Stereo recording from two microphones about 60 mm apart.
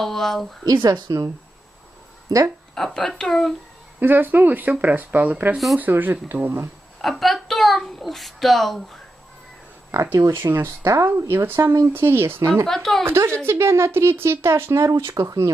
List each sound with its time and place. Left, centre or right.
0.0 s speech: centre
0.7 s speech: right
2.3 s speech: right
2.7 s speech: centre
4.0 s speech: right
7.0 s a sound: centre
9.9 s speech: right
11.1 s speech: right
12.6 s speech: centre
13.0 s speech: right